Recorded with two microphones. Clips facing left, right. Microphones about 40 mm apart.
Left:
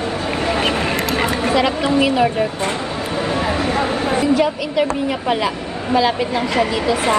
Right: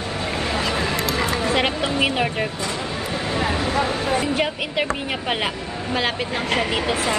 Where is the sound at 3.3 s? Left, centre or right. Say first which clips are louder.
Left 1 dB; left.